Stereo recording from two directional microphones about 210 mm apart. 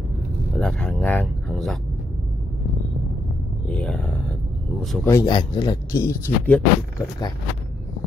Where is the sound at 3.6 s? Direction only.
5° left (ahead or behind).